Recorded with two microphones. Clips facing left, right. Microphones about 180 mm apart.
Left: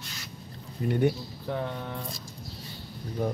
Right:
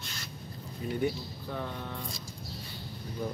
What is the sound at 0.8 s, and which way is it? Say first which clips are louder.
Speech: left 6 dB; 60° left (ahead or behind).